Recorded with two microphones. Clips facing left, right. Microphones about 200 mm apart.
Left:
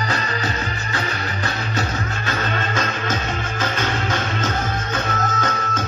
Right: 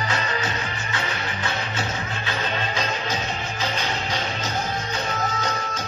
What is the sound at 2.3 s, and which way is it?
Music, 50° left (ahead or behind).